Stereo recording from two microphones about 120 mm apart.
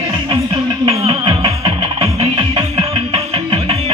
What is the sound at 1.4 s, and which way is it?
Music, 30° right (ahead or behind).